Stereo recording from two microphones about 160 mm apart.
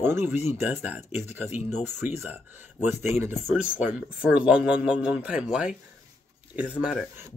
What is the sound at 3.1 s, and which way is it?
Speech, 15° right (ahead or behind).